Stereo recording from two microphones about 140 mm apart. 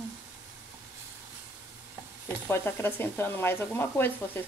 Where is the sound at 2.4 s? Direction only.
15° left (ahead or behind).